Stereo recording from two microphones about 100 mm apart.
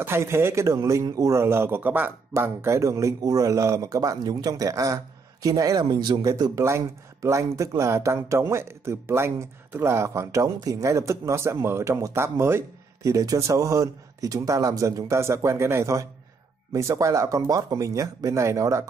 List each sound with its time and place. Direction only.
0.0 s speech: 25° right (ahead or behind)